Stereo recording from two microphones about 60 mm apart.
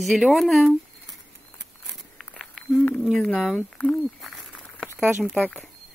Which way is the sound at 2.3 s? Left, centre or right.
Centre.